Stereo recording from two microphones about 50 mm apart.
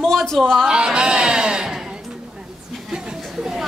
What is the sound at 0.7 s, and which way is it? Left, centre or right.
A man's voice, centre.